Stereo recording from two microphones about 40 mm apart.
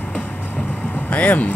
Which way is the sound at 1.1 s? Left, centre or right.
Left.